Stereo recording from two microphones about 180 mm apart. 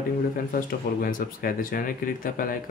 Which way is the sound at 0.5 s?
50° left (ahead or behind).